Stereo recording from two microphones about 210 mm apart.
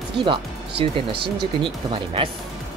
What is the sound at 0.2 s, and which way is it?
Speech, 25° right (ahead or behind).